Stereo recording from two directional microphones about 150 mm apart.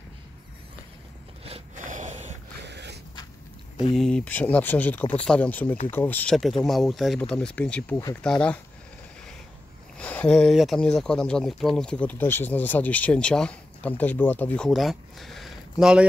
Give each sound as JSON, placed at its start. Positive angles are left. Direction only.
{"t": 1.4, "sound": "biting", "side_deg": -40}
{"t": 1.9, "sound": "snort", "side_deg": -55}
{"t": 3.9, "sound": "speech", "side_deg": 5}
{"t": 9.9, "sound": "speech", "side_deg": 10}